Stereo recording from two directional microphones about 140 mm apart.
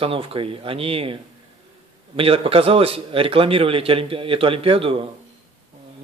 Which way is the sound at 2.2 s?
40° right (ahead or behind).